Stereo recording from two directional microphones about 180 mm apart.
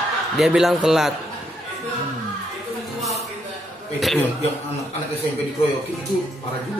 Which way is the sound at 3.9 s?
Centre (ahead or behind).